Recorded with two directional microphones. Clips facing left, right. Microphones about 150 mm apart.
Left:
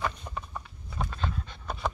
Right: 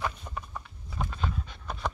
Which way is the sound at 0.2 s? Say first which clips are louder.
Left 1 dB; centre (ahead or behind).